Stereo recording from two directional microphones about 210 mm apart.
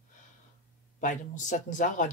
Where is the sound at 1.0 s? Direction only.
35° left (ahead or behind).